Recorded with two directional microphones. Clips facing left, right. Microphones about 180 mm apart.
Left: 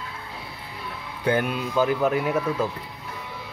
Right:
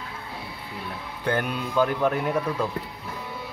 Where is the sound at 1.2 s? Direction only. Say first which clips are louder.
Left 3 dB; 5° left (ahead or behind).